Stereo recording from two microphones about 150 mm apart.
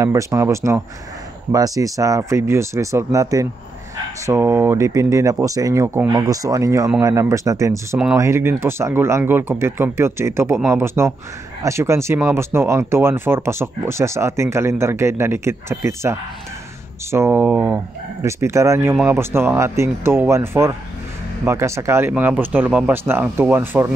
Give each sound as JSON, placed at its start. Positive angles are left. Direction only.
{"t": 0.0, "sound": "speech", "side_deg": -20}